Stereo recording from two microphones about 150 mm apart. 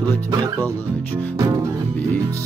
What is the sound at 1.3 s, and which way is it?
Music, 25° right (ahead or behind).